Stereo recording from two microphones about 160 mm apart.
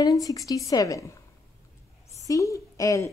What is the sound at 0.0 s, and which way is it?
A woman's voice, 20° left (ahead or behind).